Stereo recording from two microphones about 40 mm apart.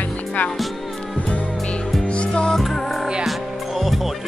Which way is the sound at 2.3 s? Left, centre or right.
Centre.